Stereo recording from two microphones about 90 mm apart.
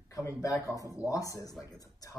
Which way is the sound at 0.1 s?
35° left (ahead or behind).